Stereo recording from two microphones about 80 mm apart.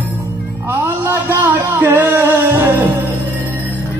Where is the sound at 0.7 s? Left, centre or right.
Right.